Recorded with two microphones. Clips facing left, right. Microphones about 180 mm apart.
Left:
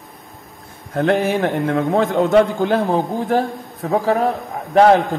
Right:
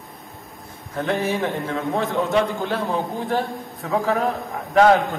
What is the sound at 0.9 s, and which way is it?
A man's voice, 55° left (ahead or behind).